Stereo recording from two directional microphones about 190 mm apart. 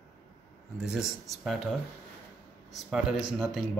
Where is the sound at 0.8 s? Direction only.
5° right (ahead or behind).